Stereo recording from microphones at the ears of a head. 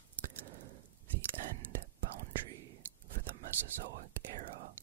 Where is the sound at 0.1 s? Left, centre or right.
Right.